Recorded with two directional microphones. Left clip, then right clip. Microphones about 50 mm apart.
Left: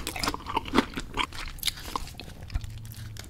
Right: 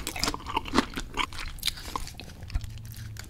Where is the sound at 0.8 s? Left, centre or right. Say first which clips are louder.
Even; right.